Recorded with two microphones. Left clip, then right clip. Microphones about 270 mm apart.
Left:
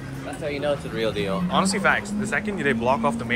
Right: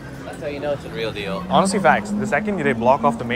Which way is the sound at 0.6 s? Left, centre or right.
Left.